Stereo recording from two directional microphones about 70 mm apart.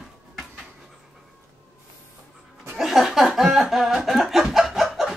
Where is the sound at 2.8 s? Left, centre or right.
Centre.